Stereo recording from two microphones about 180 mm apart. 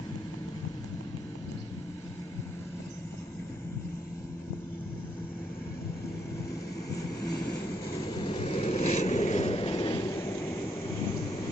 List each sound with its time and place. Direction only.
8.3 s vehicle: 35° left (ahead or behind)
10.1 s vehicle: 15° left (ahead or behind)